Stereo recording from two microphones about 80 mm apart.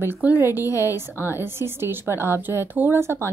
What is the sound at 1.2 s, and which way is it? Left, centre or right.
A woman's voice, right.